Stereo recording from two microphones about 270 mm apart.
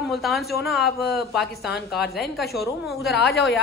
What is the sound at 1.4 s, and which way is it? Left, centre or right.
Speech, left.